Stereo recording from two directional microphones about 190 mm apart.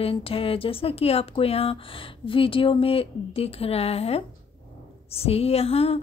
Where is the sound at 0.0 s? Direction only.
30° left (ahead or behind).